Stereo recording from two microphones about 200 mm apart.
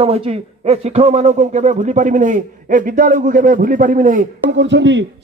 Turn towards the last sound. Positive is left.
turn(degrees=-65)  # may be behind; listen again after turning